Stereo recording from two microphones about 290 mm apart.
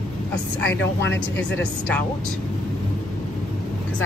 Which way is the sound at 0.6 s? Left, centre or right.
Left.